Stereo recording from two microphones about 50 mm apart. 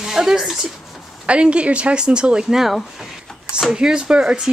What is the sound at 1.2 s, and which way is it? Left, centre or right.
Speech, right.